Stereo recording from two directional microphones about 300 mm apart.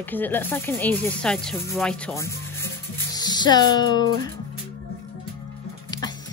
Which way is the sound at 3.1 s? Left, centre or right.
Centre.